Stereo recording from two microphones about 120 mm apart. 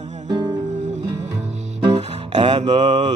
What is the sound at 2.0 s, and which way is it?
Music, 70° right (ahead or behind).